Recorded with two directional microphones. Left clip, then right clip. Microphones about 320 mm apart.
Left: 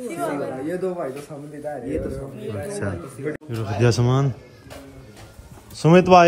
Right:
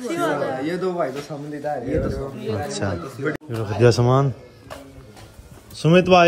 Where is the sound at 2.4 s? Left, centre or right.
Centre.